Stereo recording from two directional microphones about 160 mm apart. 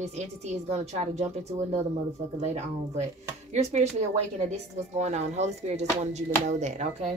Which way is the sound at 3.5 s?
45° right (ahead or behind).